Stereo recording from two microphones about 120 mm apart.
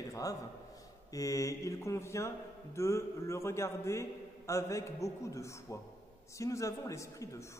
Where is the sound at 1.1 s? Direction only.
30° left (ahead or behind).